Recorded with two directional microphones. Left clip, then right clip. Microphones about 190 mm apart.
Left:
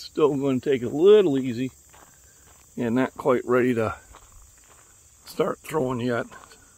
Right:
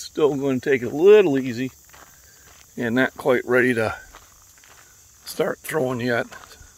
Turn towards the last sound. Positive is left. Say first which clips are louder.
# right 3 dB
turn(degrees=15)  # may be behind; listen again after turning